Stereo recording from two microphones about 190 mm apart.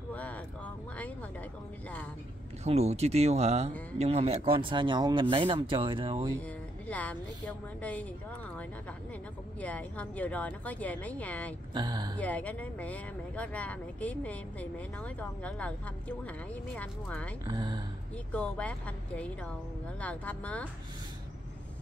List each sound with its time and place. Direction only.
0.1 s vehicle: 5° left (ahead or behind)
2.6 s speech: 35° right (ahead or behind)
6.4 s a woman's voice: 5° left (ahead or behind)
9.6 s speech: 5° left (ahead or behind)
11.7 s speech: 25° right (ahead or behind)
12.2 s speech: 5° left (ahead or behind)
17.5 s speech: 25° right (ahead or behind)
18.1 s speech: 5° left (ahead or behind)